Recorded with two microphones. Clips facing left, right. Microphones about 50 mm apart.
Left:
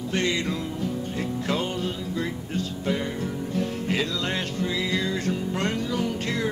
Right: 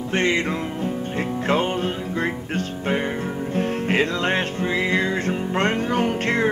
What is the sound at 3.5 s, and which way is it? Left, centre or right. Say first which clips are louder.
Music: right 6 dB; right.